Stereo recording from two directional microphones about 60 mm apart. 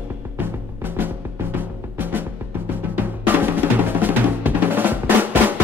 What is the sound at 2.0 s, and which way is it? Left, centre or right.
Drum, right.